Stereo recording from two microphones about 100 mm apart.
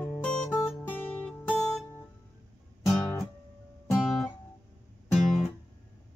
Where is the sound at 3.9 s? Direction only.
Centre (ahead or behind).